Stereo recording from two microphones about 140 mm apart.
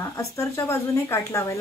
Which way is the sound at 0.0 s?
20° left (ahead or behind).